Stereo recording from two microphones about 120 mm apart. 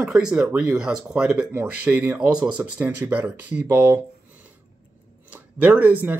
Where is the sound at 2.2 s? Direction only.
35° right (ahead or behind).